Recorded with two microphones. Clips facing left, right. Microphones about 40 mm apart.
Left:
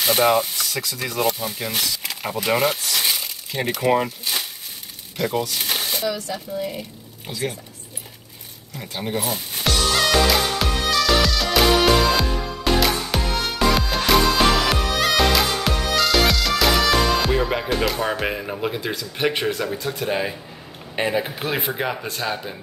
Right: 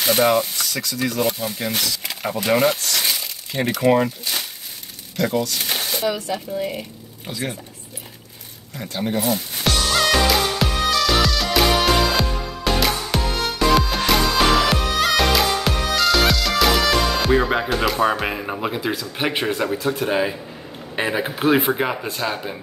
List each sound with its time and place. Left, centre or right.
0.0 s speech: centre
5.3 s speech: centre
5.6 s a sound: centre
6.0 s speech: right
7.2 s speech: centre
8.8 s music: centre
17.8 s speech: centre